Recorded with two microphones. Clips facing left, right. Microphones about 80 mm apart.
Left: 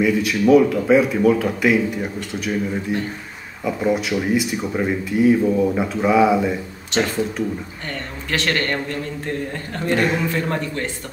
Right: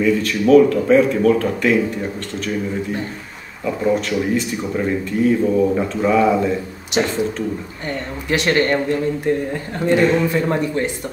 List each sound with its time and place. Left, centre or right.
0.0 s speech: centre
3.6 s speech: centre
6.9 s speech: centre